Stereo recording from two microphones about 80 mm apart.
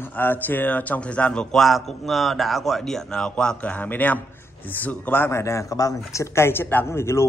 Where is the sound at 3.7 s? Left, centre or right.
Left.